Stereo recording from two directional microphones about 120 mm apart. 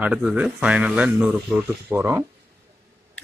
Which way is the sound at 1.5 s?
15° right (ahead or behind).